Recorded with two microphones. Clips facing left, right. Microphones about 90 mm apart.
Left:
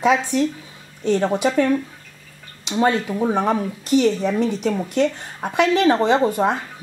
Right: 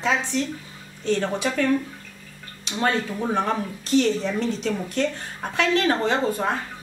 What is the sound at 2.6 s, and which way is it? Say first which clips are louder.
Speech: left 5 dB; 15° left (ahead or behind).